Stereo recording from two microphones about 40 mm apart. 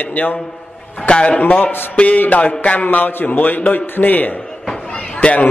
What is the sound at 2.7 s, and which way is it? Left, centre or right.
A man's voice, left.